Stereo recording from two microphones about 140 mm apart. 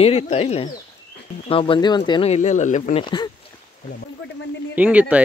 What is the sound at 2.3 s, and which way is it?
Speech, 60° left (ahead or behind).